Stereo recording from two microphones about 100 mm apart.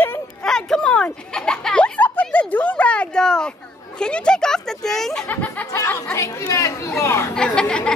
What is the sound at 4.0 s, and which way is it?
Speech, 10° left (ahead or behind).